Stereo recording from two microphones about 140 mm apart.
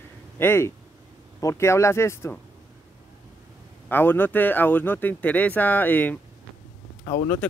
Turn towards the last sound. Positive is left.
turn(degrees=25)  # may be behind; listen again after turning